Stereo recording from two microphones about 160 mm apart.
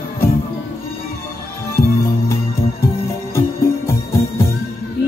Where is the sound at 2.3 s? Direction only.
15° left (ahead or behind).